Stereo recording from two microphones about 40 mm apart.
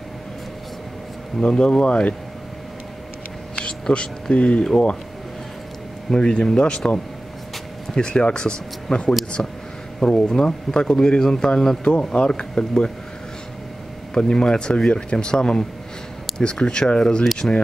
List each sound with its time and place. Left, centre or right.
1.4 s speech: left
3.5 s speech: left
6.1 s speech: left
7.9 s speech: centre
11.1 s speech: centre
14.1 s speech: centre